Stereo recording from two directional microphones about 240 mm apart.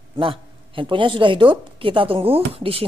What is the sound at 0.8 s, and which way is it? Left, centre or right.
Speech, right.